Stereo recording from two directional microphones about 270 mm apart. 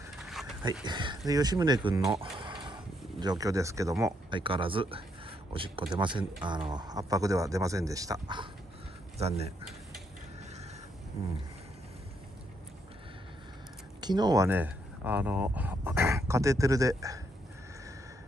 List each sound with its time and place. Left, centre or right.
0.2 s a sound: centre
0.8 s speech: centre
14.0 s speech: centre